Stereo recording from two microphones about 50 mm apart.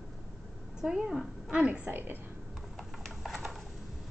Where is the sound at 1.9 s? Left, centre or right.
Right.